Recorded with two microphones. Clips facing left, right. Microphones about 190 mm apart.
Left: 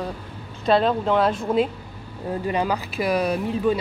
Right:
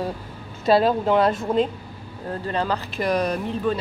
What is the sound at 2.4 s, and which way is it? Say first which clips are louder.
A woman's voice: left 1 dB; 10° left (ahead or behind).